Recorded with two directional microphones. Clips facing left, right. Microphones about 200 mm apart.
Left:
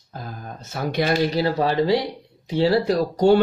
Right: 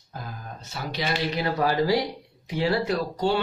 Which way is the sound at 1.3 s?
30° left (ahead or behind).